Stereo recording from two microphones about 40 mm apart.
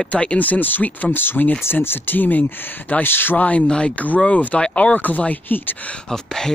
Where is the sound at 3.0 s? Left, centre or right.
Left.